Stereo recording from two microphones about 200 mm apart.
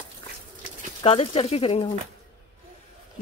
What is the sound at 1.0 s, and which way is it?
Speech, 25° left (ahead or behind).